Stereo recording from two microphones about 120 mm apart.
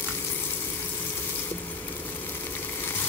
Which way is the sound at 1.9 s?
15° left (ahead or behind).